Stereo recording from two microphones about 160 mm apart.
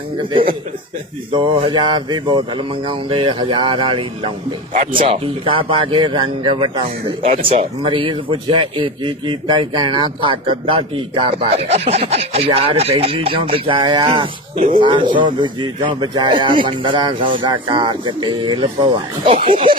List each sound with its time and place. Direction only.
1.3 s speech: 35° right (ahead or behind)
4.7 s a man's voice: 50° right (ahead or behind)
5.1 s speech: 35° right (ahead or behind)